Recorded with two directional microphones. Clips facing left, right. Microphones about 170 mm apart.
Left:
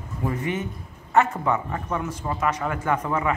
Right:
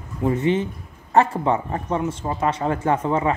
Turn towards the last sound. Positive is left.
turn(degrees=-25)  # may be behind; listen again after turning